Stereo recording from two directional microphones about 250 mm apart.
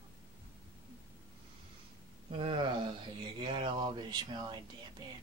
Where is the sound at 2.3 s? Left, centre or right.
Right.